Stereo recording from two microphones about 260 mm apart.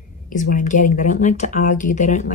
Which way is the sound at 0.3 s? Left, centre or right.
Left.